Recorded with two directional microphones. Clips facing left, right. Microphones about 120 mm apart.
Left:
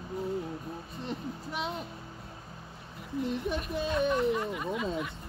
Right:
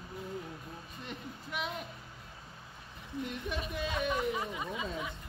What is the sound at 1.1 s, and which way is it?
Speech, 35° left (ahead or behind).